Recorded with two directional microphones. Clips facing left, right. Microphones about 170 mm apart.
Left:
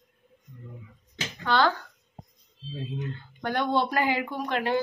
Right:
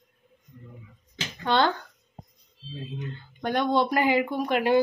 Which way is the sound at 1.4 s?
20° right (ahead or behind).